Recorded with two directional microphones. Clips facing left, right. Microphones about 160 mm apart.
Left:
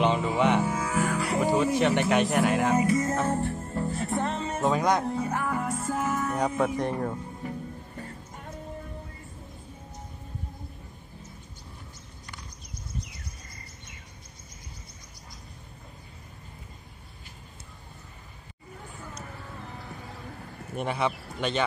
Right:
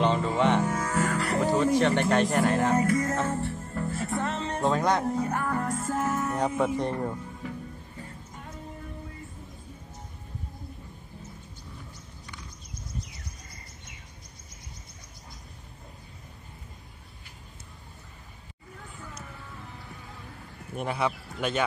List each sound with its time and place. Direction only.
0.0 s music: 10° left (ahead or behind)
3.3 s music: 40° left (ahead or behind)
3.9 s music: centre (ahead or behind)
4.2 s music: 10° left (ahead or behind)
20.7 s speech: 5° right (ahead or behind)